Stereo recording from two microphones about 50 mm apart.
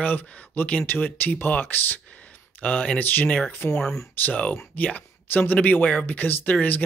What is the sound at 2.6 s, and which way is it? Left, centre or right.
Speech, left.